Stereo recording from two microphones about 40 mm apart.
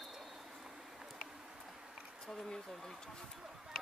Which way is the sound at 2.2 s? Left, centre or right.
Centre.